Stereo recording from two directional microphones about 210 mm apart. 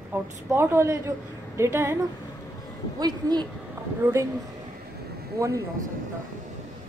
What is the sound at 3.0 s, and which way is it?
Speech, 20° right (ahead or behind).